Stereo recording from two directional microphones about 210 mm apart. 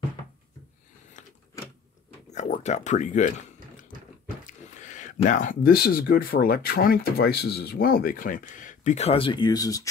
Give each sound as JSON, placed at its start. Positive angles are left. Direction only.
{"t": 1.2, "sound": "power windows", "side_deg": 35}
{"t": 2.3, "sound": "speech", "side_deg": 35}
{"t": 4.5, "sound": "speech", "side_deg": 35}